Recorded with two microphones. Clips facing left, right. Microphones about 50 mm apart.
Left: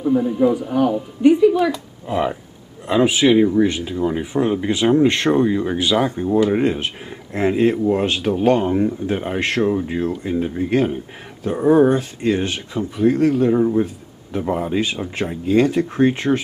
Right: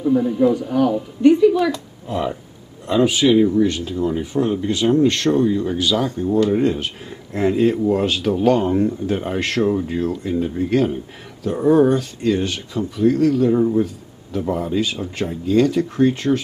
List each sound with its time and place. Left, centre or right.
0.0 s speech: centre
2.0 s speech: left
7.7 s speech: centre
13.0 s speech: left